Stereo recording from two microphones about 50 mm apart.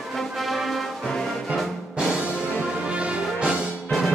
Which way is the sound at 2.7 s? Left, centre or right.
Right.